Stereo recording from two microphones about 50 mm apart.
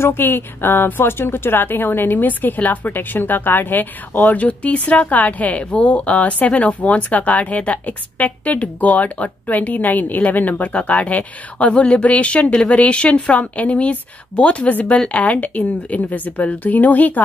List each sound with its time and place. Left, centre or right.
0.0 s a woman's voice: left